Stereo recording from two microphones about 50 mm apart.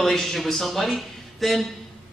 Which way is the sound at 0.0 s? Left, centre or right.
Centre.